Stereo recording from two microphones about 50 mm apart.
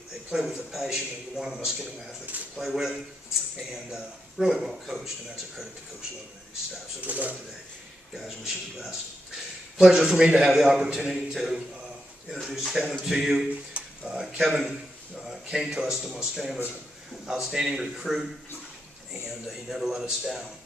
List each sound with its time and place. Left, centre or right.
0.3 s a man's voice: centre
4.6 s a man's voice: centre
7.0 s speech: right
8.1 s a man's voice: centre
13.7 s a sound: centre
14.3 s a man's voice: centre
19.2 s a man's voice: centre